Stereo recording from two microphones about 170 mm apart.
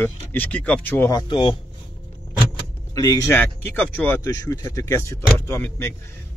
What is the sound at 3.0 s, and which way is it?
Speech, 20° left (ahead or behind).